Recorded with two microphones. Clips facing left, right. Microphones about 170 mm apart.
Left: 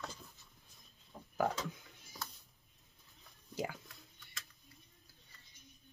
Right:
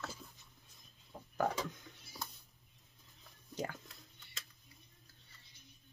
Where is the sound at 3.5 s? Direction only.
10° left (ahead or behind).